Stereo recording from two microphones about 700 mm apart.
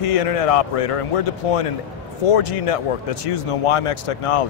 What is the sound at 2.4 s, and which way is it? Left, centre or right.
Speech, left.